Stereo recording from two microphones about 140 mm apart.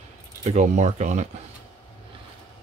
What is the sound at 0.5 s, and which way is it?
Speech, 55° right (ahead or behind).